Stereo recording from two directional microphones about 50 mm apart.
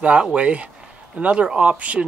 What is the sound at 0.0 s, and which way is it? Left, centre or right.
Speech, right.